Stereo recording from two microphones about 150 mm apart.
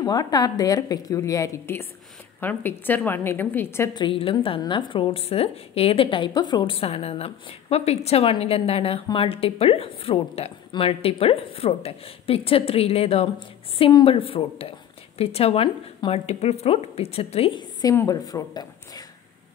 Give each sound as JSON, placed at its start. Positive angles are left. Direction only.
{"t": 0.0, "sound": "a woman's voice", "side_deg": 25}
{"t": 3.9, "sound": "a woman's voice", "side_deg": 35}